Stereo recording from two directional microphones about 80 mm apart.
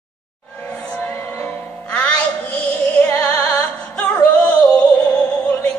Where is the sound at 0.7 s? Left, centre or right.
Centre.